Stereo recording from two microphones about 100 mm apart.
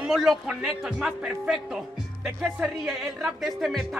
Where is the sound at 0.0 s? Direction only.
5° right (ahead or behind).